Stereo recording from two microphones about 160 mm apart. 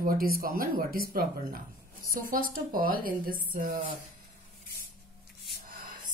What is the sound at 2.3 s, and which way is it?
A woman's voice, 65° right (ahead or behind).